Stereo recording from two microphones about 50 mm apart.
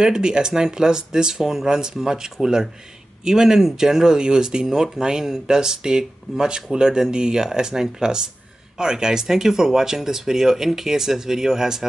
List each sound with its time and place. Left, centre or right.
0.0 s speech: centre